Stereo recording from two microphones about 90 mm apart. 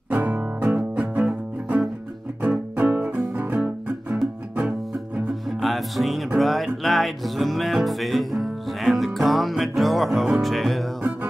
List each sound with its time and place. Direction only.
0.3 s music: 20° right (ahead or behind)
5.6 s music: centre (ahead or behind)